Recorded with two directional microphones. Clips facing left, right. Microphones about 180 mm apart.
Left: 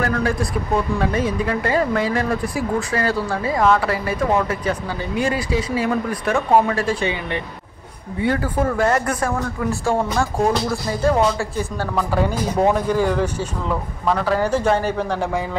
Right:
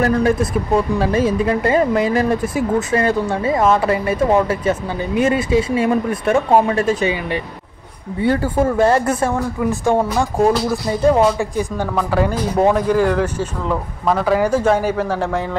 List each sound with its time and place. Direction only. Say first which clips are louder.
0.0 s speech: right 5 dB; 25° right (ahead or behind)
8.2 s speech: right 4 dB; 30° right (ahead or behind)
10.0 s a man's voice: right 4 dB; 5° right (ahead or behind)
11.3 s speech: right 4 dB; 15° right (ahead or behind)
12.2 s a man's voice: right 3 dB; centre (ahead or behind)